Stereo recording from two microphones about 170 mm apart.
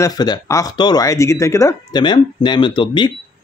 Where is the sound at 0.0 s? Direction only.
25° left (ahead or behind).